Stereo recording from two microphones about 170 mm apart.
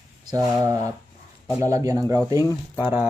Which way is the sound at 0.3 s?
20° right (ahead or behind).